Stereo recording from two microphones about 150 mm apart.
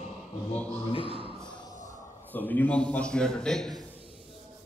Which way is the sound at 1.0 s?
35° right (ahead or behind).